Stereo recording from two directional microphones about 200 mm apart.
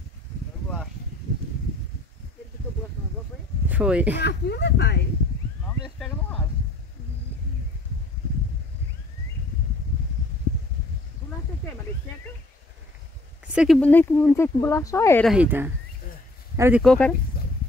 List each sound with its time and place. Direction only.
3.6 s speech: 5° right (ahead or behind)
4.2 s speech: 60° left (ahead or behind)
5.9 s a sound: centre (ahead or behind)
13.5 s a sound: 5° right (ahead or behind)
13.7 s speech: 10° left (ahead or behind)
15.2 s speech: 5° right (ahead or behind)
16.8 s speech: 5° left (ahead or behind)